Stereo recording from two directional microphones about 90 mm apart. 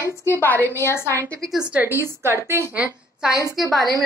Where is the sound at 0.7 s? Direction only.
30° left (ahead or behind).